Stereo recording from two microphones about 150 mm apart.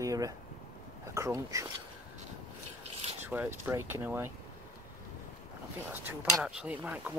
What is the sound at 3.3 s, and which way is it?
Speech, 10° right (ahead or behind).